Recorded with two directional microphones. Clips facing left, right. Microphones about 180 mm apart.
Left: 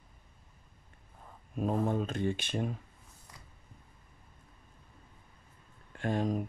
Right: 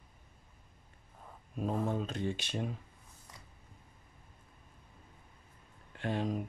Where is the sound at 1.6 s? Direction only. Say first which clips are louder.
Left 3 dB; 50° left (ahead or behind).